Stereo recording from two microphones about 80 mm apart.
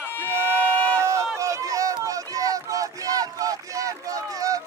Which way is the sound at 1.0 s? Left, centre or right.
Right.